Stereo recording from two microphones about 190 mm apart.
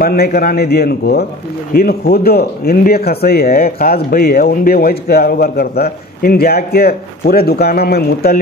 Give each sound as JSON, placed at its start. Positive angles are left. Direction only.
{"t": 0.0, "sound": "a man's voice", "side_deg": 50}